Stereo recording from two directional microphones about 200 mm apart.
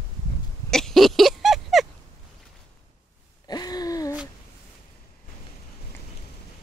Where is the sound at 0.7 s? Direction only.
Centre (ahead or behind).